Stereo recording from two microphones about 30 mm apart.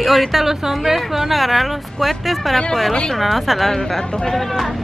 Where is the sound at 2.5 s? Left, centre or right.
Centre.